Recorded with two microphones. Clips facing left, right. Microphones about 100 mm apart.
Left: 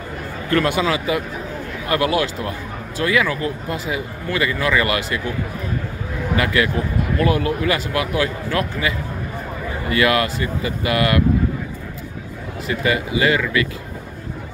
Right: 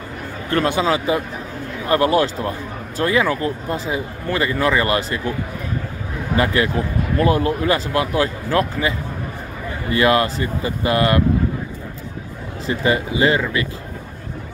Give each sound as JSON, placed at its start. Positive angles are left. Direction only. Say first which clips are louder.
{"t": 0.5, "sound": "speech", "louder": "even", "side_deg": -25}
{"t": 6.3, "sound": "speech", "louder": "right 1 dB", "side_deg": -35}
{"t": 12.6, "sound": "speech", "louder": "right 2 dB", "side_deg": -30}